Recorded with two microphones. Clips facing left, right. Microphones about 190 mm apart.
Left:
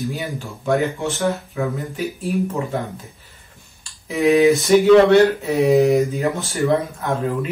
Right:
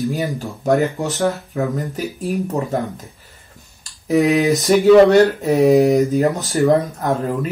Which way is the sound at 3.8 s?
40° right (ahead or behind).